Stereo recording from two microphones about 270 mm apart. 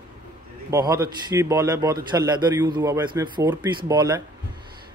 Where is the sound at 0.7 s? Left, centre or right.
Centre.